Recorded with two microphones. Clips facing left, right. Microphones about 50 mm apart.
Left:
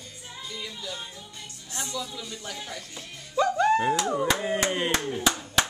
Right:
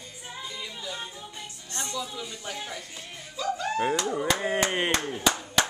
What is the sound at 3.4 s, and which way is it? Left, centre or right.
Slap, left.